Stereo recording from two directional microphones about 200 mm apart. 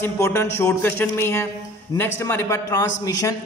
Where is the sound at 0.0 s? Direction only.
10° left (ahead or behind).